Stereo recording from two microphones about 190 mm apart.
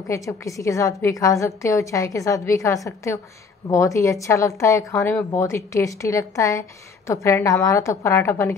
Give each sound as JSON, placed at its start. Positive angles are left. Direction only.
{"t": 0.1, "sound": "a woman's voice", "side_deg": 15}